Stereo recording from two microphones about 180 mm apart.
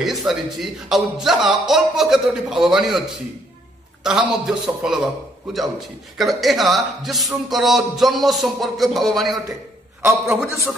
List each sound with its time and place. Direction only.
0.0 s a man's voice: centre (ahead or behind)
4.0 s a man's voice: 5° right (ahead or behind)
6.1 s a man's voice: centre (ahead or behind)
10.0 s a man's voice: 15° right (ahead or behind)